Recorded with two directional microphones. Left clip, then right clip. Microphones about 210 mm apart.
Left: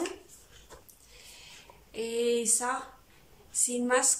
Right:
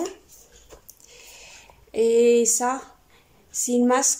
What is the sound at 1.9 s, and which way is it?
Speech, 35° right (ahead or behind).